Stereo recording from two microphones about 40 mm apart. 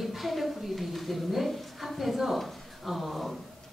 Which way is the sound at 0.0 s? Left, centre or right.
Centre.